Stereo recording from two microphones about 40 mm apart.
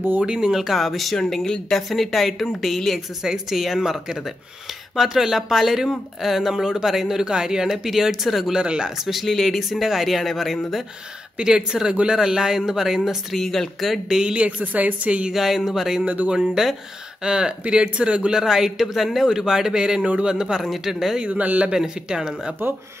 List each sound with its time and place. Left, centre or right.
0.2 s speech: right
0.5 s speech: centre
8.5 s speech: centre
9.0 s speech: centre
11.3 s speech: centre
13.3 s speech: centre
14.0 s speech: centre
14.3 s a woman's voice: right
15.0 s a woman's voice: right
15.3 s speech: centre; by 18.4 s right
18.4 s speech: centre
21.2 s a woman's voice: right
21.7 s speech: centre